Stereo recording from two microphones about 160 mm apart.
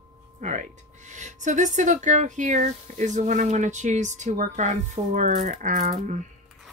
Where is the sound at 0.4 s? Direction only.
50° right (ahead or behind).